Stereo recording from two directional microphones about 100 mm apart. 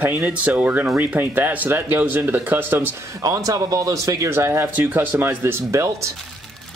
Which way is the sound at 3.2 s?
35° right (ahead or behind).